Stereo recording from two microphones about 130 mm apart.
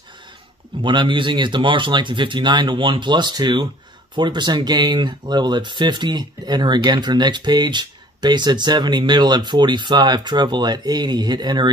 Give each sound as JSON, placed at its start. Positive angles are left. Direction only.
{"t": 0.8, "sound": "speech", "side_deg": -40}